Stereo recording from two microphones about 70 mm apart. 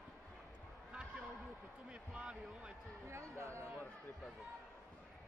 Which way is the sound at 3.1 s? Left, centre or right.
Right.